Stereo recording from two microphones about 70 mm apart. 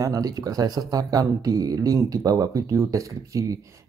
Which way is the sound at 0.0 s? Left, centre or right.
Right.